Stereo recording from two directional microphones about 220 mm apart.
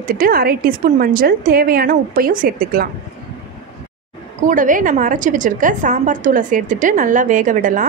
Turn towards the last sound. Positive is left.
turn(degrees=-35)  # may be behind; listen again after turning